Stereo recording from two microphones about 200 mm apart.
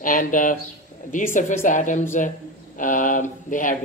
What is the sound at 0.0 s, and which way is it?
Speech, 40° left (ahead or behind).